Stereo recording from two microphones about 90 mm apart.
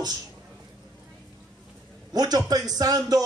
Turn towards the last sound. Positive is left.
turn(degrees=-45)  # may be behind; listen again after turning